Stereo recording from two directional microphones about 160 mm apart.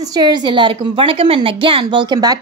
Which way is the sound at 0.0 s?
25° right (ahead or behind).